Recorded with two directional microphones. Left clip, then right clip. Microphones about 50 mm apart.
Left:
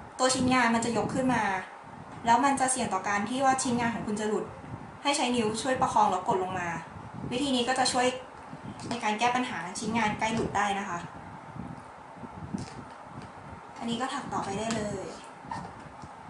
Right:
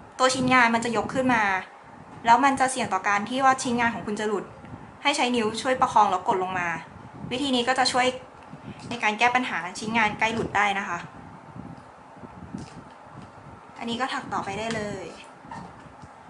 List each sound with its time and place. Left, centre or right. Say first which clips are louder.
0.2 s a woman's voice: right 5 dB; right
13.8 s a woman's voice: right 4 dB; right